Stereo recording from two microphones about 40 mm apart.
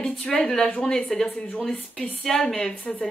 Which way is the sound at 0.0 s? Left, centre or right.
Centre.